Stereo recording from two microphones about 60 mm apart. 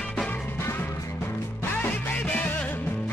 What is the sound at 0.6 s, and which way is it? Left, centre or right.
Music, left.